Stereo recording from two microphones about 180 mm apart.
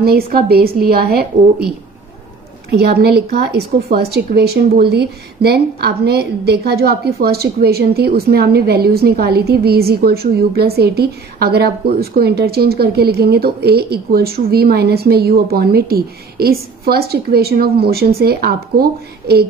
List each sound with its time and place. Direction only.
0.0 s a woman's voice: 55° right (ahead or behind)
2.7 s a woman's voice: 60° right (ahead or behind)